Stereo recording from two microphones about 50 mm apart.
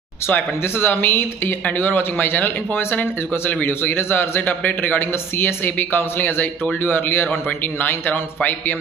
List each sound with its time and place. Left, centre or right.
0.3 s speech: left
8.1 s speech: left